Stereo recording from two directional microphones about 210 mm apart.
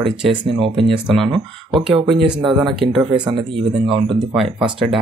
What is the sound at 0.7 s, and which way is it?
Speech, 5° right (ahead or behind).